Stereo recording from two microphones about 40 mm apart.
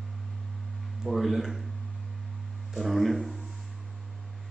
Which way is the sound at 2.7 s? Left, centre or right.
Centre.